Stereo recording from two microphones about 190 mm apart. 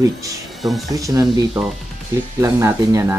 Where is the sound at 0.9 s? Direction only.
20° right (ahead or behind).